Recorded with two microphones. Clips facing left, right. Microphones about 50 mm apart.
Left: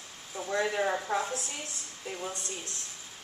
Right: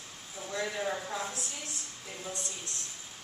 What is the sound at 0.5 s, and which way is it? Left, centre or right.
Speech, left.